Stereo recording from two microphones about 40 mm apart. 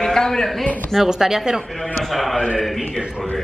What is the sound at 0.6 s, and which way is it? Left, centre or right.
Speech, left.